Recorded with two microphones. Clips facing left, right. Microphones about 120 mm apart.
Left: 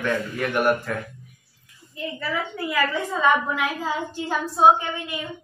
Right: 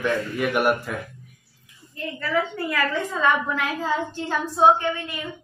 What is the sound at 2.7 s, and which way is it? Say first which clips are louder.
A woman's voice: left 3 dB; 10° left (ahead or behind).